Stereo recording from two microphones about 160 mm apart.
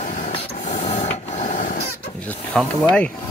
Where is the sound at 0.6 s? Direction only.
45° left (ahead or behind).